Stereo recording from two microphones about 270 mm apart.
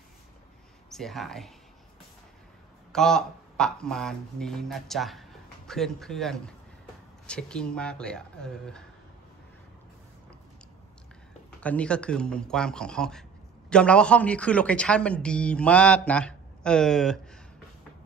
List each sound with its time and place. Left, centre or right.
0.8 s speech: centre
2.9 s a man's voice: centre
11.6 s a man's voice: centre